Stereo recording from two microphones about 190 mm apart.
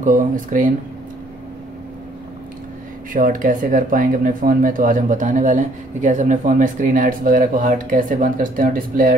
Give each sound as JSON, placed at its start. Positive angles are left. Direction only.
{"t": 0.0, "sound": "speech", "side_deg": -45}
{"t": 3.1, "sound": "speech", "side_deg": -45}